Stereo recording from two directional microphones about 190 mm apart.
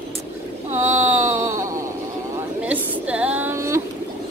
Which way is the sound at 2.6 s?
5° right (ahead or behind).